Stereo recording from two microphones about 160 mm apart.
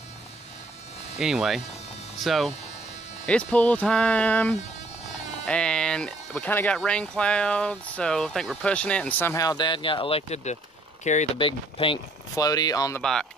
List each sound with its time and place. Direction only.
1.2 s speech: centre (ahead or behind)
9.3 s speech: 20° left (ahead or behind); by 10.6 s 45° left (ahead or behind)
11.3 s speech: 30° left (ahead or behind)
13.0 s speech: 5° left (ahead or behind)